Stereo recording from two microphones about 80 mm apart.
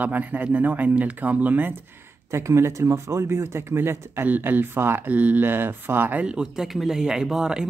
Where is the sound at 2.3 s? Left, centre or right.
Right; by 7.6 s centre.